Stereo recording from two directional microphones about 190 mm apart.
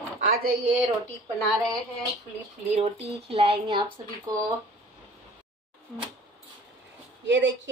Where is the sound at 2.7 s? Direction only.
35° right (ahead or behind).